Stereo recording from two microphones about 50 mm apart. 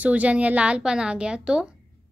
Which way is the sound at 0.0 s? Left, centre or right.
Right.